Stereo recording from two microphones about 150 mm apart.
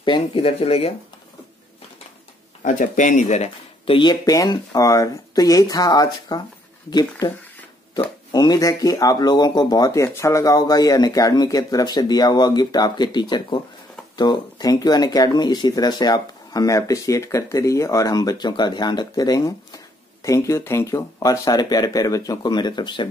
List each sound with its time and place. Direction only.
0.0 s speech: 35° left (ahead or behind)
2.6 s speech: 55° left (ahead or behind); by 7.2 s 25° left (ahead or behind)
8.3 s speech: 25° left (ahead or behind)